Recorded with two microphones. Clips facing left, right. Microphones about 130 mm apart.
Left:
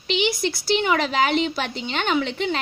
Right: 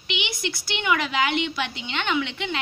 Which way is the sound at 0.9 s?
40° left (ahead or behind).